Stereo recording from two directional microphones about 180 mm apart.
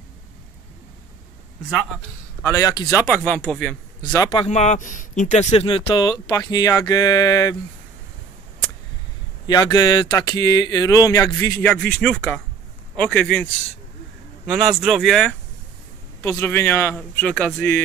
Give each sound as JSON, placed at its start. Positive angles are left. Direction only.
{"t": 2.4, "sound": "speech", "side_deg": 20}
{"t": 4.3, "sound": "speech", "side_deg": 35}
{"t": 9.5, "sound": "speech", "side_deg": 20}